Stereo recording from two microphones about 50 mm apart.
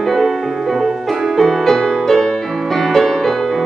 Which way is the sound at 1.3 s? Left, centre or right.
Centre.